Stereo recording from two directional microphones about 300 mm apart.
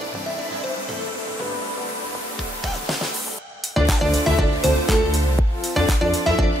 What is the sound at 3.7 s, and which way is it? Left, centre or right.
Music, centre.